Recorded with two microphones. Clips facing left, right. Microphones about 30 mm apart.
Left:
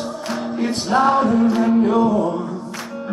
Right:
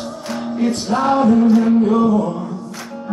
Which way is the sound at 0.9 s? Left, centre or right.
Left.